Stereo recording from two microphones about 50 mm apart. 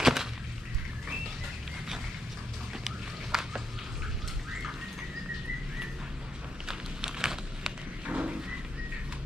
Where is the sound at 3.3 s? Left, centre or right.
Centre.